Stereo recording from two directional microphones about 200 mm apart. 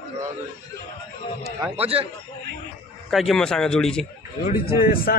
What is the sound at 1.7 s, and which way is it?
Speech, 30° right (ahead or behind).